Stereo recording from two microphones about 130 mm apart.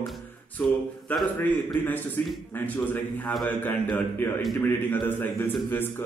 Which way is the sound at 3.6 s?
15° left (ahead or behind).